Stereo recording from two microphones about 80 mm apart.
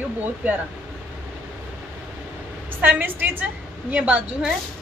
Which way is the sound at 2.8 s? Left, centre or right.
Right.